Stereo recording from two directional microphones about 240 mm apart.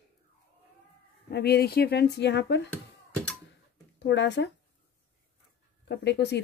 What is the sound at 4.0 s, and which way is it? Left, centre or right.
Speech, left.